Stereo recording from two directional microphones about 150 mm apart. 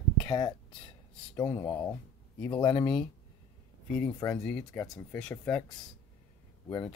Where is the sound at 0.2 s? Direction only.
30° left (ahead or behind).